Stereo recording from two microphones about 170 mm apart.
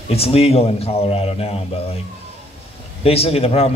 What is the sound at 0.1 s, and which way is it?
A man's voice, 35° left (ahead or behind).